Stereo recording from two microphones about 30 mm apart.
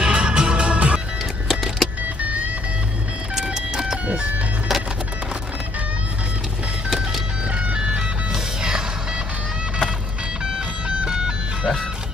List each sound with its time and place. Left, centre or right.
0.0 s music: right
1.5 s vehicle: centre
3.4 s music: right
7.7 s music: right
11.1 s music: right